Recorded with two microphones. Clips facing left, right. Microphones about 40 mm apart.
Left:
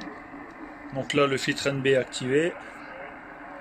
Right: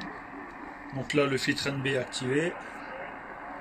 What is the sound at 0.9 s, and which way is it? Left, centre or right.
Speech, left.